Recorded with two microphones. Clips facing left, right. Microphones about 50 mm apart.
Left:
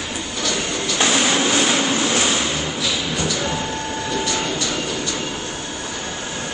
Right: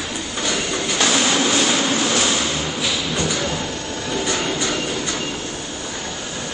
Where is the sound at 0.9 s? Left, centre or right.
Left.